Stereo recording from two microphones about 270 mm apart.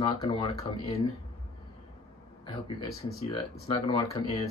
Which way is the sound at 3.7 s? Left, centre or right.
Centre.